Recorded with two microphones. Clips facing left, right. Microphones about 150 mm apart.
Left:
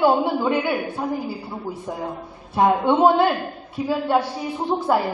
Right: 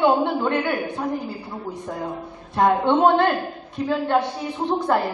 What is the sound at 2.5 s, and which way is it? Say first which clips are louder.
A woman's voice: left 1 dB; 5° left (ahead or behind).